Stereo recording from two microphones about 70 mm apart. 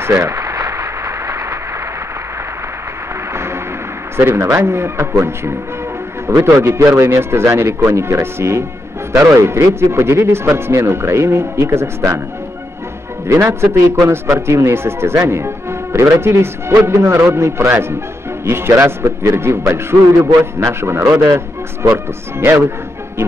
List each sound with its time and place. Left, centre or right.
0.0 s a sound: right
4.2 s speech: right
13.3 s speech: right
22.4 s speech: right